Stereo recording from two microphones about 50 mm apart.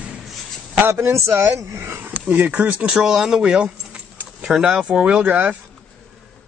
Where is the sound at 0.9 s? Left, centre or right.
Right.